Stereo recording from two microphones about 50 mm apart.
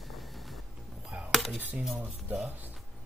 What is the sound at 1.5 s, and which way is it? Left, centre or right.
Speech, right.